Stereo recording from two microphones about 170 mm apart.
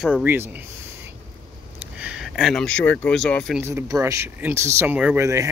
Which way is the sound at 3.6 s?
15° right (ahead or behind).